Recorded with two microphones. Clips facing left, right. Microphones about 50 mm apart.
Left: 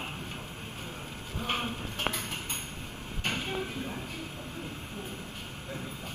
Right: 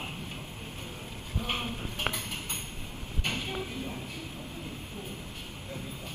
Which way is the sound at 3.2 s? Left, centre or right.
Left.